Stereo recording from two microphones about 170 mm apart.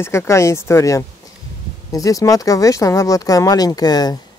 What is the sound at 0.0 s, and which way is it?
Speech, 15° left (ahead or behind).